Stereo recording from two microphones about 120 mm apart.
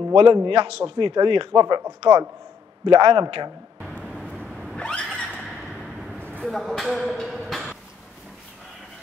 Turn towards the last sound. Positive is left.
turn(degrees=0)  # may be behind; listen again after turning